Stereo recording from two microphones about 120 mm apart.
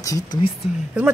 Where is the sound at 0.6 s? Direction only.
10° right (ahead or behind).